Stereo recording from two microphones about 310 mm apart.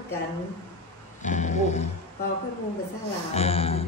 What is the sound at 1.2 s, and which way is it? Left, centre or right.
Speech, left.